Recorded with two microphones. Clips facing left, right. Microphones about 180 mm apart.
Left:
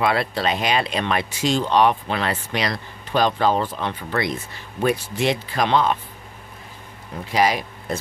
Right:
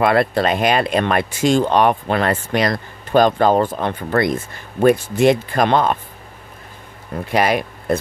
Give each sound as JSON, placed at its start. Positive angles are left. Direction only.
{"t": 0.0, "sound": "speech", "side_deg": -50}
{"t": 7.2, "sound": "speech", "side_deg": -60}